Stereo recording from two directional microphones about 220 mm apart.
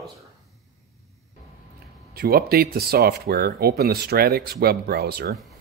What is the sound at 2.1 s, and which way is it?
Speech, 45° right (ahead or behind).